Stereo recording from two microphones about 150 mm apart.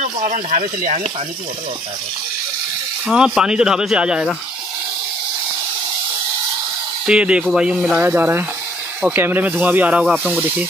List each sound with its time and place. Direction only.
0.0 s speech: 60° right (ahead or behind)
3.1 s speech: 5° right (ahead or behind)
7.1 s speech: 5° right (ahead or behind)